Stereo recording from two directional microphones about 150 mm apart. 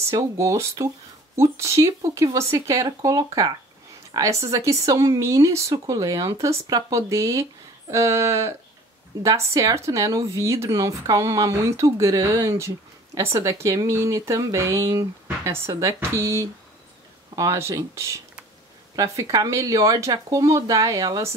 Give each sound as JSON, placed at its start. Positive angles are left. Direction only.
{"t": 0.1, "sound": "speech", "side_deg": -20}